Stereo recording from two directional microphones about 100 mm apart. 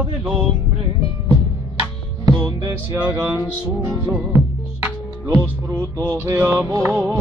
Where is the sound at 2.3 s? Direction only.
45° right (ahead or behind).